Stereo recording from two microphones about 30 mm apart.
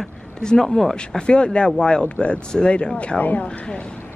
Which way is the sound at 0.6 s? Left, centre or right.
Centre.